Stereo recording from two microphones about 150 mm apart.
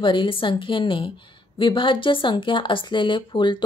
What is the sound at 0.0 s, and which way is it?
A woman's voice, 35° left (ahead or behind).